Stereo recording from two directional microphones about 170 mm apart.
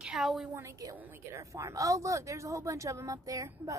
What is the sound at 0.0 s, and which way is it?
Speech, centre (ahead or behind).